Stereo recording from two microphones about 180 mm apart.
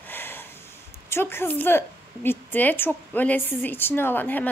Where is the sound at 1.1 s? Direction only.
10° left (ahead or behind).